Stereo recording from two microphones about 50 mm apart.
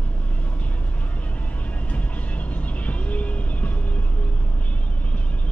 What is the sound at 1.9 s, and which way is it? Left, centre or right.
Vehicle, left.